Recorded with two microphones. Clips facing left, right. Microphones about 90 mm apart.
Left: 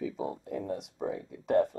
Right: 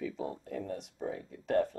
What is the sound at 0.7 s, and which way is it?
Speech, 60° left (ahead or behind).